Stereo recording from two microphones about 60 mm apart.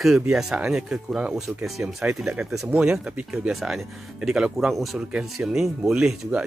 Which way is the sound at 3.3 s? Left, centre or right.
Centre.